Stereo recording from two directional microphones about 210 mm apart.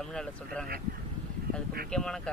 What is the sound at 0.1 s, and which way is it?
Speech, 5° left (ahead or behind).